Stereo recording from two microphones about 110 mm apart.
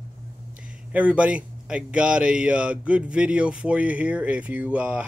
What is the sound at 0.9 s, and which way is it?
A man's voice, 10° right (ahead or behind).